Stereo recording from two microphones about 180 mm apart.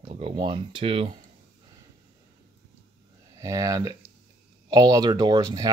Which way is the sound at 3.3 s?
20° right (ahead or behind).